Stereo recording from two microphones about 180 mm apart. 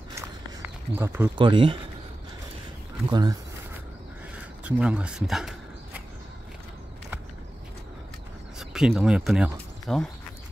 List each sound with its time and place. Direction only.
0.9 s speech: 15° right (ahead or behind)
1.3 s speech: 25° right (ahead or behind)
3.1 s speech: 20° right (ahead or behind)
4.6 s speech: 5° right (ahead or behind)
8.5 s speech: centre (ahead or behind)